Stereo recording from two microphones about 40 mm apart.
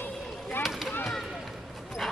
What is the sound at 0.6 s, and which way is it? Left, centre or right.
Chop, centre.